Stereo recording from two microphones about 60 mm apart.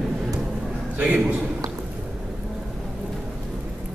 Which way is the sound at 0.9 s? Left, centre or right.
Centre.